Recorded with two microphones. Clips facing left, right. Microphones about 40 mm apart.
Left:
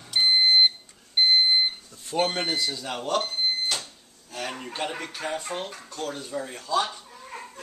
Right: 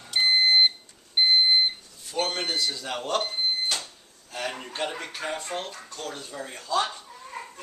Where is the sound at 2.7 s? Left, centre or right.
Centre.